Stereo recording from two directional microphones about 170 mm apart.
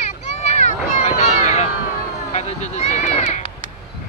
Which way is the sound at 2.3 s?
40° left (ahead or behind).